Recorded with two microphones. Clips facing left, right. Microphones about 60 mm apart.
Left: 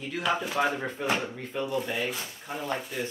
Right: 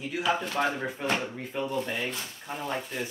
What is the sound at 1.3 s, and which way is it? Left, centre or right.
Speech, centre.